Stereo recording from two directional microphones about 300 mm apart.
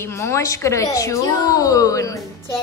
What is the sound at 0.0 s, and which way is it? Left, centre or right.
A child's voice, centre.